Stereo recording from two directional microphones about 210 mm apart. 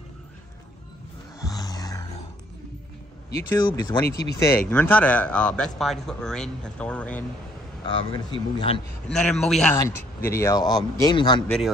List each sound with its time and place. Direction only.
1.4 s music: 20° left (ahead or behind)
3.6 s speech: 20° left (ahead or behind)
7.8 s speech: 25° left (ahead or behind)
9.1 s speech: 5° left (ahead or behind)
9.8 s a man's voice: 15° left (ahead or behind)
11.4 s speech: 5° left (ahead or behind)